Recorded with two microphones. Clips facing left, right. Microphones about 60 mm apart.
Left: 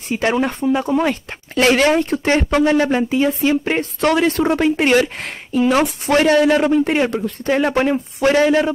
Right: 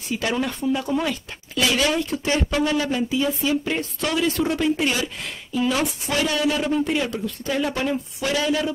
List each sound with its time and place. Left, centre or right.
0.1 s speech: left